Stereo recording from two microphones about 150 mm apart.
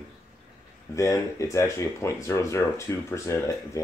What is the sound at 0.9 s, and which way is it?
Speech, 20° left (ahead or behind).